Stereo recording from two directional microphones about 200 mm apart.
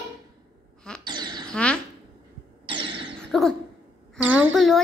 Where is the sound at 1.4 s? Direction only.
5° left (ahead or behind).